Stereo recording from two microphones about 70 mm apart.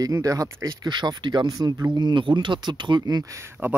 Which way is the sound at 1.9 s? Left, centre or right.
Right.